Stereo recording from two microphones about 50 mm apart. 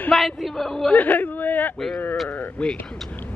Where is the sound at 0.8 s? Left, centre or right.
Left.